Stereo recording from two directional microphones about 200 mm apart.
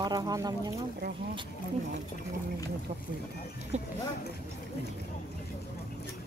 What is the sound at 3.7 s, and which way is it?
Speech, 35° right (ahead or behind).